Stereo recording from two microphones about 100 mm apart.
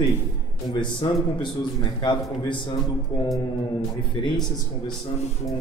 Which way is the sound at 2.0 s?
55° left (ahead or behind).